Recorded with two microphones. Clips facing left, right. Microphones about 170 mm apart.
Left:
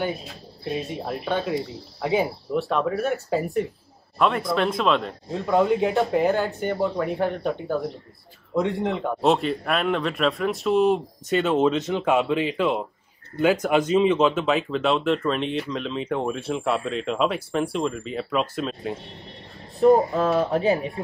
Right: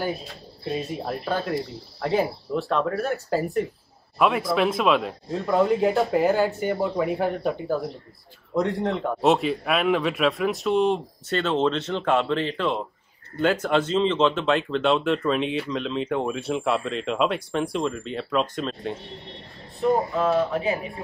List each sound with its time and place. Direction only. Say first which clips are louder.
0.7 s speech: even; centre (ahead or behind)
19.8 s speech: left 5 dB; 40° left (ahead or behind)